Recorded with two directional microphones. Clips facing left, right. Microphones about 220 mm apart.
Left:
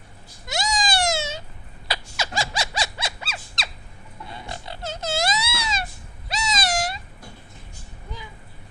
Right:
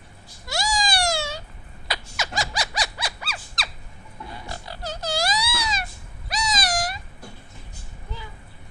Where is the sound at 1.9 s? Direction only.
30° left (ahead or behind).